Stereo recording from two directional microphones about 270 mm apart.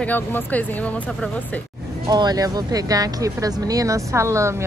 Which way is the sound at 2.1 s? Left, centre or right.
Centre.